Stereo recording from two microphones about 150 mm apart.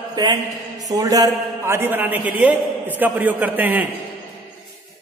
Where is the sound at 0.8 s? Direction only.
25° right (ahead or behind).